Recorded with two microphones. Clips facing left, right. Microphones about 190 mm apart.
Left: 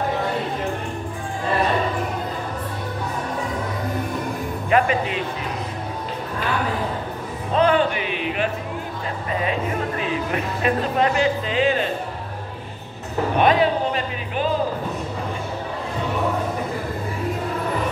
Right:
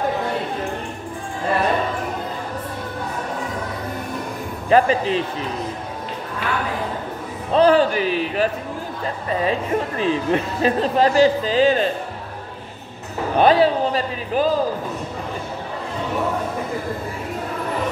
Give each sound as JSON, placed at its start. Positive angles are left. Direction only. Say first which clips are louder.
{"t": 4.6, "sound": "speech", "louder": "right 4 dB", "side_deg": -35}
{"t": 7.5, "sound": "speech", "louder": "right 4 dB", "side_deg": -35}
{"t": 13.4, "sound": "speech", "louder": "right 3 dB", "side_deg": -35}